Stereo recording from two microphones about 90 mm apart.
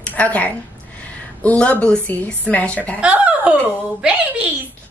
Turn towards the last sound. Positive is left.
turn(degrees=-10)  # may be behind; listen again after turning